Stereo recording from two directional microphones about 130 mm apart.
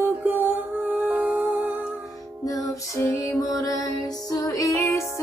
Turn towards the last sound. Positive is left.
turn(degrees=20)  # may be behind; listen again after turning